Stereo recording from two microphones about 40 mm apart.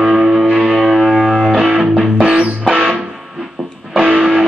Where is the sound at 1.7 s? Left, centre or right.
Right.